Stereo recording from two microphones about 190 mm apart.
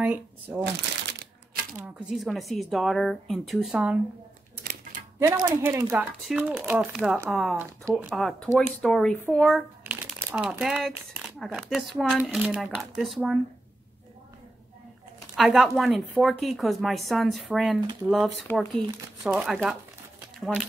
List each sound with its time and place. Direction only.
0.0 s speech: 5° right (ahead or behind)
0.7 s crumpling: 65° right (ahead or behind)
2.0 s a woman's voice: centre (ahead or behind)
5.2 s a woman's voice: 15° right (ahead or behind)
15.3 s a woman's voice: centre (ahead or behind)